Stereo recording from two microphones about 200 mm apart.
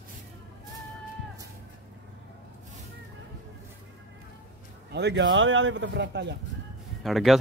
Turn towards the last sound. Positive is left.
turn(degrees=0)  # may be behind; listen again after turning